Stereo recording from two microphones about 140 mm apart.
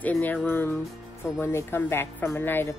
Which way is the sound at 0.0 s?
10° left (ahead or behind).